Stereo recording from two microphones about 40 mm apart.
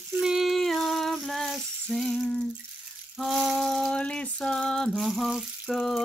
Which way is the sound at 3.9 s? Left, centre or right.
Left.